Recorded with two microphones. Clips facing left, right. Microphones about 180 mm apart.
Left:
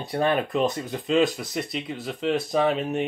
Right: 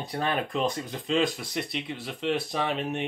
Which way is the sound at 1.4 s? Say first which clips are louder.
Left 3 dB; 45° left (ahead or behind).